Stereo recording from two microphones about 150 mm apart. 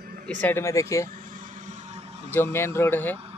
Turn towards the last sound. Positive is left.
turn(degrees=15)  # may be behind; listen again after turning